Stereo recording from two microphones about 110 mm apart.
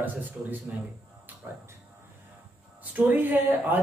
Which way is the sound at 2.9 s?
15° right (ahead or behind).